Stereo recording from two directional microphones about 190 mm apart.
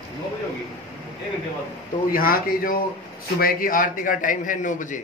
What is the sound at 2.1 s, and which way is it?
A man's voice, 50° left (ahead or behind).